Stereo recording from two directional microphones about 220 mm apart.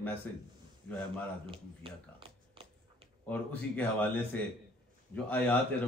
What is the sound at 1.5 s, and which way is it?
Speech, 25° right (ahead or behind).